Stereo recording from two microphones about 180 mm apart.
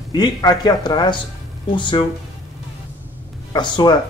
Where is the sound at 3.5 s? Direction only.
25° left (ahead or behind).